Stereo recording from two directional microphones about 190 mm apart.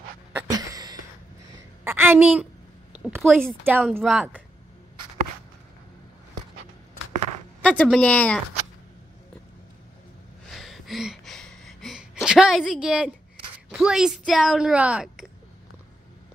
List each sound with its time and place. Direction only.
0.3 s a sound: 15° right (ahead or behind)
3.6 s speech: 10° right (ahead or behind)
4.0 s speech: centre (ahead or behind)
7.6 s speech: 5° left (ahead or behind)
10.5 s a sound: centre (ahead or behind)
13.7 s speech: 5° right (ahead or behind)